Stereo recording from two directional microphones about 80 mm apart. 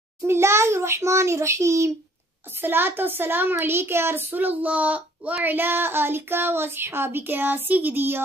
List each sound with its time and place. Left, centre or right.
0.3 s a child's voice: right
2.5 s a child's voice: right